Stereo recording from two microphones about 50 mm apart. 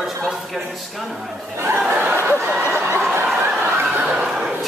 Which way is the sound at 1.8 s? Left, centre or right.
Right.